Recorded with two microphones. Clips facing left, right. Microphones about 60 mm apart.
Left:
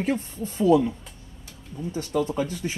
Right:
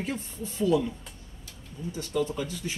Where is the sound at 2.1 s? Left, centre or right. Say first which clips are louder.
Left 4 dB; left.